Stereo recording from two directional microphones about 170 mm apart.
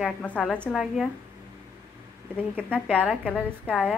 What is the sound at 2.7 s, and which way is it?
A woman's voice, 5° left (ahead or behind).